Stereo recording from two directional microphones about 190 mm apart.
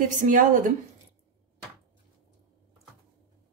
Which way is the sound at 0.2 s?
45° right (ahead or behind).